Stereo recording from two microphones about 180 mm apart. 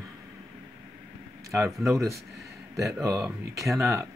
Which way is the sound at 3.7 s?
Centre (ahead or behind).